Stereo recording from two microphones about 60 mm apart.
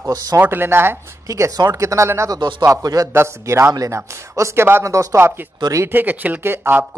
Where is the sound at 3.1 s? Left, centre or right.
Right.